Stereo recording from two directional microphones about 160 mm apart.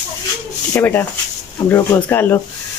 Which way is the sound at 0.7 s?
10° left (ahead or behind).